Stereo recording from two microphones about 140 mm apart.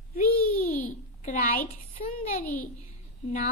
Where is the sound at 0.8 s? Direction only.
70° left (ahead or behind).